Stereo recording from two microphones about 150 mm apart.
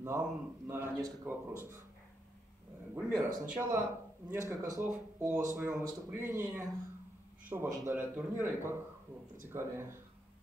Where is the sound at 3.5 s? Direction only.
15° right (ahead or behind).